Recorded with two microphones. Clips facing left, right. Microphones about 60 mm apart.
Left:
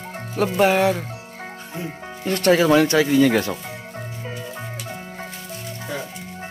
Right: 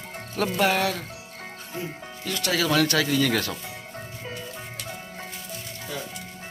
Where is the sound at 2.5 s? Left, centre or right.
Left.